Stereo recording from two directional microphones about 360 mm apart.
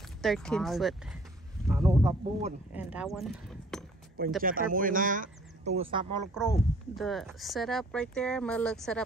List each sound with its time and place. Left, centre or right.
0.2 s speech: centre
4.4 s speech: right
6.3 s speech: centre